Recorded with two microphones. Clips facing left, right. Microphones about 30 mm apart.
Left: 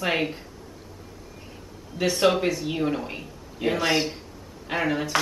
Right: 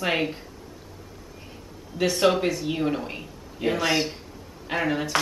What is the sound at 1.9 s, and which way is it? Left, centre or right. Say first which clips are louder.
Speech: even; centre.